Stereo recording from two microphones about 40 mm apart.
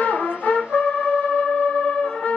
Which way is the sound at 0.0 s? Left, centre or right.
Left.